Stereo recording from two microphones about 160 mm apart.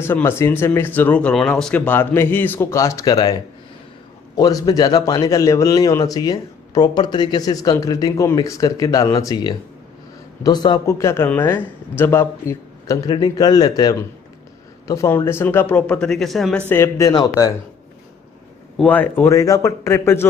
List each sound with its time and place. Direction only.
0.0 s speech: 15° left (ahead or behind)
4.4 s a man's voice: 25° left (ahead or behind); by 16.6 s centre (ahead or behind)
16.6 s a man's voice: 15° left (ahead or behind)
18.8 s speech: 10° left (ahead or behind)